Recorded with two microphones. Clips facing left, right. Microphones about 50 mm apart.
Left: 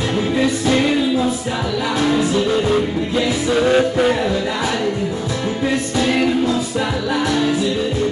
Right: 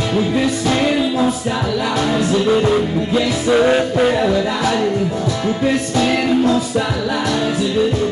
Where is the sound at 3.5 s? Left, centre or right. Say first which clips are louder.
Right 4 dB; centre.